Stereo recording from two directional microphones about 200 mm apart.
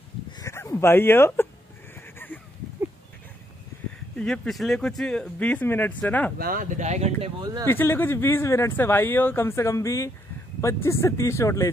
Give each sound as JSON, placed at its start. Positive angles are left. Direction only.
{"t": 0.4, "sound": "a sound", "side_deg": 15}
{"t": 4.2, "sound": "speech", "side_deg": 0}
{"t": 6.3, "sound": "speech", "side_deg": -45}
{"t": 7.6, "sound": "speech", "side_deg": 10}